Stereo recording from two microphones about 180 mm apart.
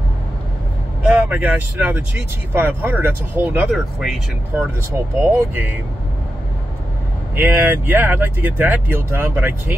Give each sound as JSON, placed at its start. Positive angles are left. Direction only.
{"t": 1.0, "sound": "speech", "side_deg": -5}
{"t": 5.2, "sound": "speech", "side_deg": -15}
{"t": 7.3, "sound": "speech", "side_deg": -10}